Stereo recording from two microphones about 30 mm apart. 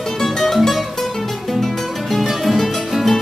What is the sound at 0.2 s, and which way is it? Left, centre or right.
Music, centre.